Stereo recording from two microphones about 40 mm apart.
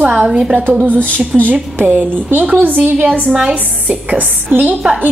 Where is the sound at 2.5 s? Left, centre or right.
Right.